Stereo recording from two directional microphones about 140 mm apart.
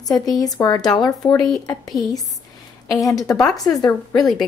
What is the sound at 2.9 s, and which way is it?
A woman's voice, 25° left (ahead or behind).